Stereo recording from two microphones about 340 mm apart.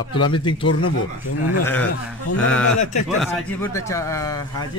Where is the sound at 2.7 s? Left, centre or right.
Left.